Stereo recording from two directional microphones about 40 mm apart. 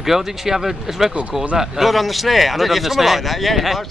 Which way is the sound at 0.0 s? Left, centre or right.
Centre.